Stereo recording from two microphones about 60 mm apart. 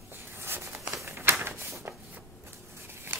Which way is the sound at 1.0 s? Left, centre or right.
Right.